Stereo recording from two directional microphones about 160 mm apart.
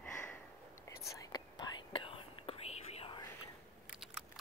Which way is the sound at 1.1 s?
25° left (ahead or behind).